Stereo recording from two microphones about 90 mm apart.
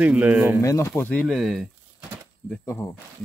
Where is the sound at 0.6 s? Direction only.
30° left (ahead or behind).